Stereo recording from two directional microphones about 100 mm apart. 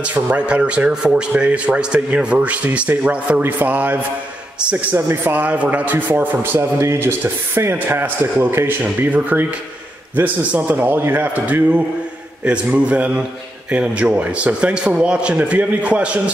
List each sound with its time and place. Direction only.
0.0 s a man's voice: 15° right (ahead or behind)